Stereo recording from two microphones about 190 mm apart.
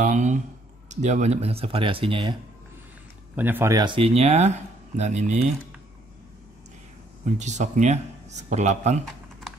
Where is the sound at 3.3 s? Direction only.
10° right (ahead or behind); by 5.5 s 35° right (ahead or behind).